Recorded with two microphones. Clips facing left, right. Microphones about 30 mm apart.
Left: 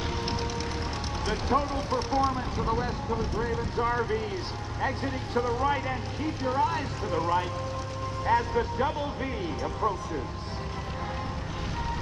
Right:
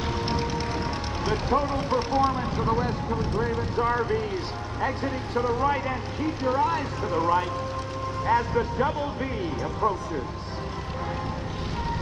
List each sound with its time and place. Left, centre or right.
1.2 s speech: centre
4.8 s speech: centre